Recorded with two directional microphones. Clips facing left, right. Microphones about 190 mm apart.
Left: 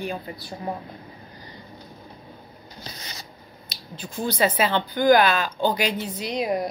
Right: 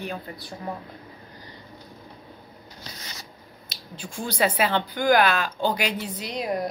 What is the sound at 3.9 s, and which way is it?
A woman's voice, 10° right (ahead or behind).